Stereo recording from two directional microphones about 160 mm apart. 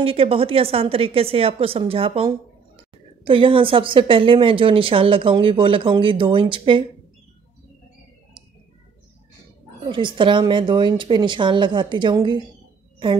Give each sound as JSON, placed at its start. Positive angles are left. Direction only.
{"t": 0.0, "sound": "a woman's voice", "side_deg": -35}
{"t": 9.8, "sound": "a woman's voice", "side_deg": -30}